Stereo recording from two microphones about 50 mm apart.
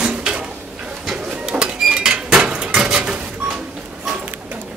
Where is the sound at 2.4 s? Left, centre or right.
Right.